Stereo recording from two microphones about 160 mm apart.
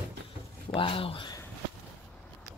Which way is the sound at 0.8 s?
35° left (ahead or behind).